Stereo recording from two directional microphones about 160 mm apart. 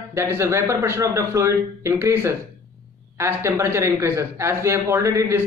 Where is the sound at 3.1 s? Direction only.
15° right (ahead or behind).